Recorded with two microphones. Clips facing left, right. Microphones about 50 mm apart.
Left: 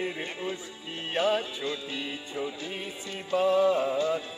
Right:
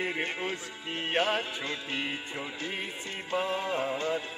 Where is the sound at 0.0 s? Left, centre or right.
Right.